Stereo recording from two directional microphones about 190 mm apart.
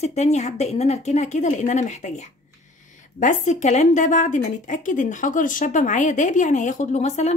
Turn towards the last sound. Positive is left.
turn(degrees=35)  # may be behind; listen again after turning